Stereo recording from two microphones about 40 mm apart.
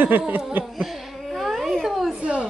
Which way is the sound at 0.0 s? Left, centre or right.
Right.